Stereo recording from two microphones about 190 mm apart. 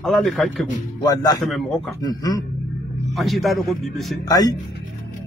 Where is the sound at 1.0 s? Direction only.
20° left (ahead or behind).